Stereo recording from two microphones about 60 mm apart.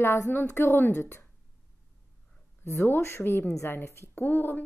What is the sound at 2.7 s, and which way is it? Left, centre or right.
A woman's voice, left.